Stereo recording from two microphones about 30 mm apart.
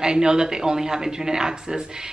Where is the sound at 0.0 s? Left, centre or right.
Right.